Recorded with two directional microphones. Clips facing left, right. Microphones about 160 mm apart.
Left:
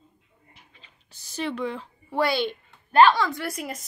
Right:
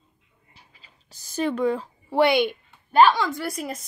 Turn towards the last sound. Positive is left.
turn(degrees=0)  # may be behind; listen again after turning